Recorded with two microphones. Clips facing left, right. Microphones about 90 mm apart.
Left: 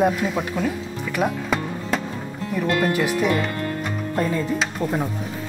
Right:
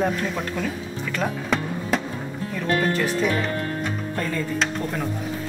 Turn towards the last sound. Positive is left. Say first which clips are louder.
# left 4 dB
turn(degrees=20)  # may be behind; listen again after turning